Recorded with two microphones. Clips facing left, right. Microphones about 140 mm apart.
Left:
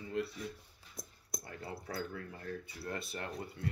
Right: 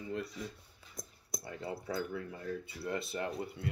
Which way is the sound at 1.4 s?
25° right (ahead or behind).